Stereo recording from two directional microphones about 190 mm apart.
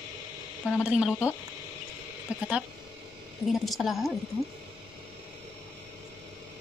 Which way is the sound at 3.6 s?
Centre (ahead or behind).